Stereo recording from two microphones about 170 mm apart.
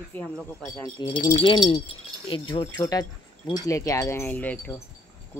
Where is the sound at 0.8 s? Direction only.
20° left (ahead or behind).